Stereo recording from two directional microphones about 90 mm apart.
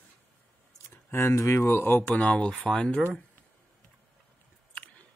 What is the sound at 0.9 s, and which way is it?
Speech, 30° left (ahead or behind).